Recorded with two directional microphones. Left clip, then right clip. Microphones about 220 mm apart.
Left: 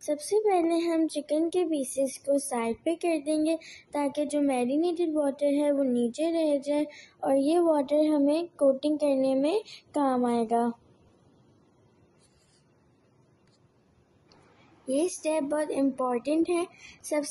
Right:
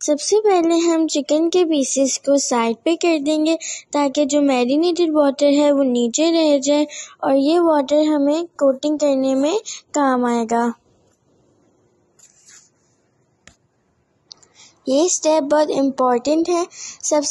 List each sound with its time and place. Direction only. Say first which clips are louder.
0.0 s a child's voice: right 10 dB; 35° right (ahead or behind)
14.9 s a child's voice: right 12 dB; 30° right (ahead or behind)